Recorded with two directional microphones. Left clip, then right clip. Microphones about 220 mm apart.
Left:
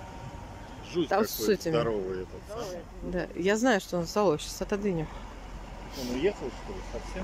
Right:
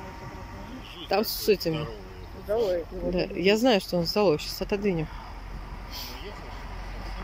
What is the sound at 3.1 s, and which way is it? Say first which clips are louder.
Speech: right 4 dB; 5° right (ahead or behind).